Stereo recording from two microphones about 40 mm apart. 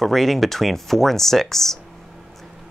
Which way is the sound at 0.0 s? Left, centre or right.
Centre.